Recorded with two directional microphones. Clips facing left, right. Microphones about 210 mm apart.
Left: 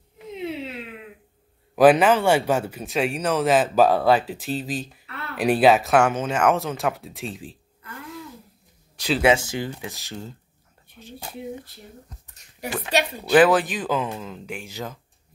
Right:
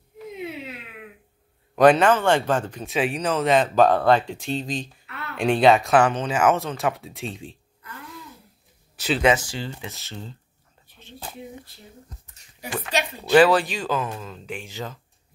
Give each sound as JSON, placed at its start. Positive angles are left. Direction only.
{"t": 1.8, "sound": "speech", "side_deg": 5}
{"t": 8.9, "sound": "speech", "side_deg": -5}
{"t": 9.4, "sound": "speech", "side_deg": 20}
{"t": 12.7, "sound": "speech", "side_deg": 0}
{"t": 13.5, "sound": "speech", "side_deg": 20}